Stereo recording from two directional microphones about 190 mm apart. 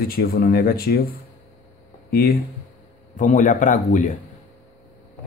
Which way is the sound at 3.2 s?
40° left (ahead or behind).